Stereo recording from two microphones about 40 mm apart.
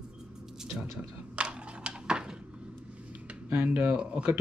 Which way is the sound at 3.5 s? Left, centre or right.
Right.